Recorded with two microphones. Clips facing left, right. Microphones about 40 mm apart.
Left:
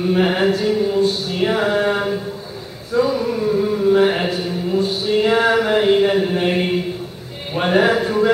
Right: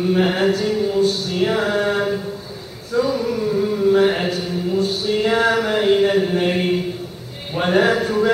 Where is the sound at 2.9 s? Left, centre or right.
Centre.